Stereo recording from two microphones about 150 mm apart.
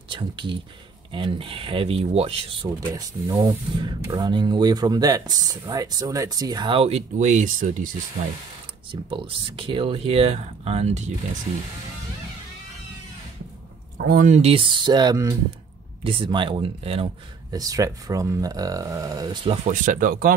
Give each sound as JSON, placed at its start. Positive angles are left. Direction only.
{"t": 0.1, "sound": "speech", "side_deg": -35}
{"t": 2.9, "sound": "speech", "side_deg": -20}
{"t": 9.1, "sound": "speech", "side_deg": -35}
{"t": 13.9, "sound": "speech", "side_deg": -75}
{"t": 14.3, "sound": "speech", "side_deg": -40}
{"t": 16.0, "sound": "speech", "side_deg": -35}
{"t": 17.5, "sound": "speech", "side_deg": -25}
{"t": 19.7, "sound": "speech", "side_deg": -60}